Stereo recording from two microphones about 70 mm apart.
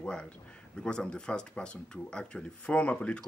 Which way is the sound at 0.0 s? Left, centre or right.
Centre.